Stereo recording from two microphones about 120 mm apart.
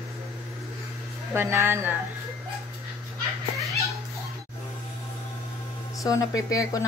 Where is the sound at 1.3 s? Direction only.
20° right (ahead or behind).